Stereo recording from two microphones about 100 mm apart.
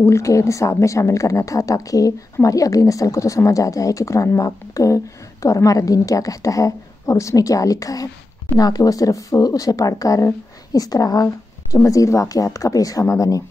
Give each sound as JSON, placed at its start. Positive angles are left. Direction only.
{"t": 0.0, "sound": "a woman's voice", "side_deg": 30}